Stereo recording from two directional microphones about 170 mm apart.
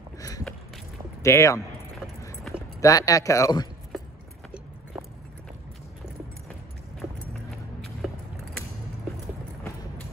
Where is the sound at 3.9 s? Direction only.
Centre (ahead or behind).